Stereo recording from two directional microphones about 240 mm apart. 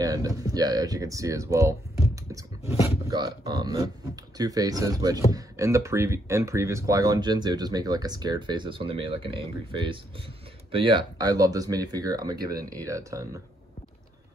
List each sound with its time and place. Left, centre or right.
0.0 s speech: centre